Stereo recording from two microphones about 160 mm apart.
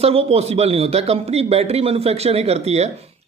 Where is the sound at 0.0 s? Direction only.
40° right (ahead or behind).